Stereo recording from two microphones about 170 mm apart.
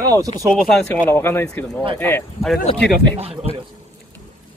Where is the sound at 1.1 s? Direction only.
15° left (ahead or behind).